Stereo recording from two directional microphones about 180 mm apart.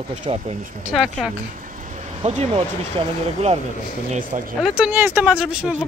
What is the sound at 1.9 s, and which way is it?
Vehicle, 40° right (ahead or behind).